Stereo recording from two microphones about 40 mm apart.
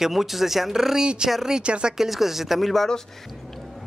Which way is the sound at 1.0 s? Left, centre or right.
Right.